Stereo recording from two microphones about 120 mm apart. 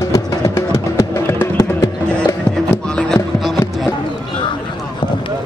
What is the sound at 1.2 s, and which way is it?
Music, 20° left (ahead or behind).